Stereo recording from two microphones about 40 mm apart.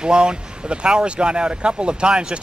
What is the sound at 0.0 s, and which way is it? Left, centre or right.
Speech, right.